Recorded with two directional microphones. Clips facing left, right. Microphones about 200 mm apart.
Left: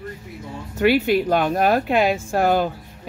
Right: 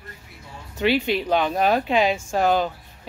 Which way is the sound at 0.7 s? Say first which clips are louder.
Left 4 dB; 10° left (ahead or behind).